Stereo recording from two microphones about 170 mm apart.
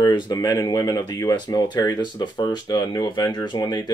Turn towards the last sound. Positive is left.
turn(degrees=25)  # may be behind; listen again after turning